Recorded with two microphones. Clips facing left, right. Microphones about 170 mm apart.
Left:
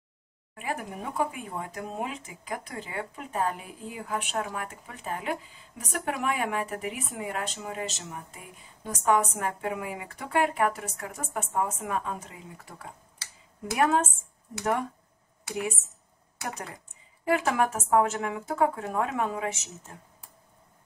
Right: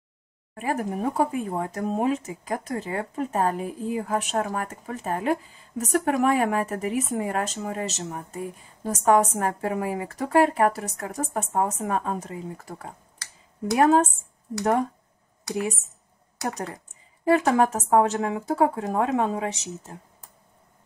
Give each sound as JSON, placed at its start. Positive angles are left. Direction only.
{"t": 0.6, "sound": "speech", "side_deg": -45}
{"t": 17.2, "sound": "speech", "side_deg": -35}